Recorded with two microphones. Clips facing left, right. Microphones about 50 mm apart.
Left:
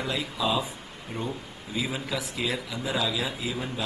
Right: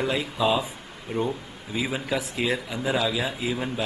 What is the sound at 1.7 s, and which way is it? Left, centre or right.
Speech, right.